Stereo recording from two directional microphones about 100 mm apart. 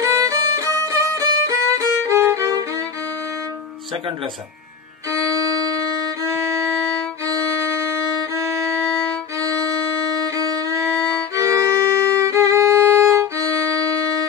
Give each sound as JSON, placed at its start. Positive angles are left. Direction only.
{"t": 0.0, "sound": "violin", "side_deg": -35}
{"t": 6.2, "sound": "violin", "side_deg": -30}